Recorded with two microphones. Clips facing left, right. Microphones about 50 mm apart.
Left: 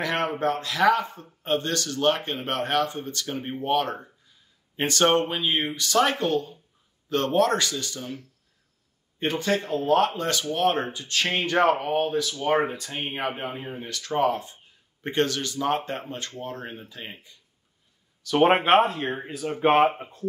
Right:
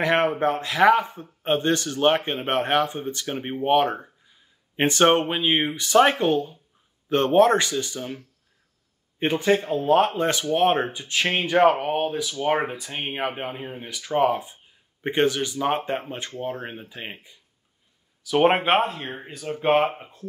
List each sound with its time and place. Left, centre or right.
0.0 s speech: right
9.2 s speech: right
18.2 s speech: centre